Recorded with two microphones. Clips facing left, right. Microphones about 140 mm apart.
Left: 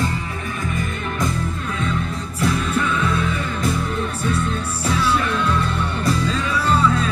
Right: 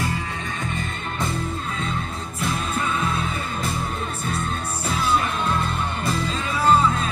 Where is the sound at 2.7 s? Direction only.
35° right (ahead or behind).